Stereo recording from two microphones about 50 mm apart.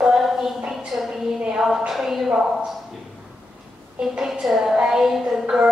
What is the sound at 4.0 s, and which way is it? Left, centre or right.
Speech, centre.